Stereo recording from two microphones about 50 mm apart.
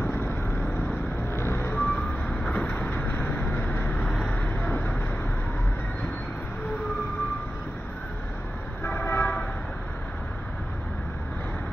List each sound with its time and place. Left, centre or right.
1.4 s vehicle: left
3.1 s vehicle: left
4.1 s vehicle: centre
4.6 s vehicle: left
8.8 s vehicle: left